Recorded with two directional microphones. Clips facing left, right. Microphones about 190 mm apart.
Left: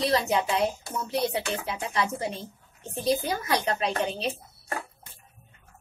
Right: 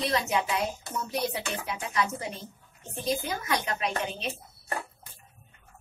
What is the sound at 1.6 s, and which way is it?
Speech, 30° left (ahead or behind).